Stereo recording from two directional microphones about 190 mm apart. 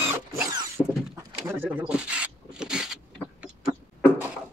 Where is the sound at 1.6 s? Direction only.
10° right (ahead or behind).